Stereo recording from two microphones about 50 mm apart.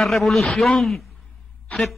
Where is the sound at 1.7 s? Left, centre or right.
Left.